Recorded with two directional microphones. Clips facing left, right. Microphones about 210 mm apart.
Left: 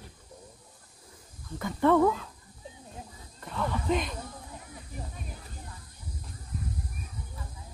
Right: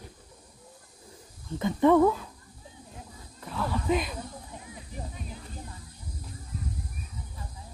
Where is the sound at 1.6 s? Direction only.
15° right (ahead or behind).